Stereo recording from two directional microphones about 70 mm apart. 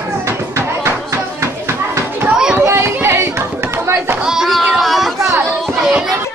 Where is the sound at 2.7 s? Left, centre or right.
Right.